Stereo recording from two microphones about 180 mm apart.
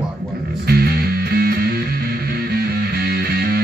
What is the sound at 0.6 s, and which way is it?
Music, 60° right (ahead or behind).